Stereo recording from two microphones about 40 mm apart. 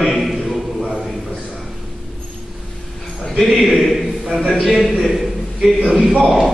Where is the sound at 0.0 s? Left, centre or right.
Centre.